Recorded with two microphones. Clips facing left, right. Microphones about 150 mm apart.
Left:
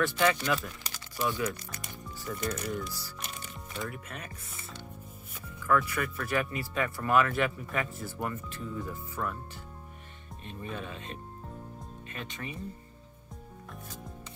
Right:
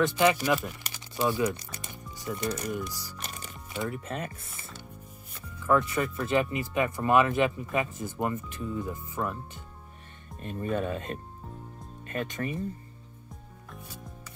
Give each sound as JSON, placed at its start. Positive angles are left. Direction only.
{"t": 0.0, "sound": "speech", "side_deg": -20}
{"t": 5.7, "sound": "speech", "side_deg": -25}
{"t": 10.4, "sound": "speech", "side_deg": -45}